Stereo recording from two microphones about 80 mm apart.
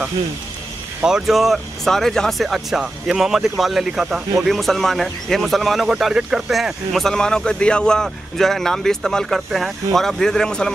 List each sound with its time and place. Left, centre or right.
1.0 s speech: centre